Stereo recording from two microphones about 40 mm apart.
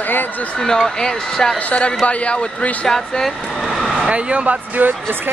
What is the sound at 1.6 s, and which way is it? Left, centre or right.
A man's voice, left.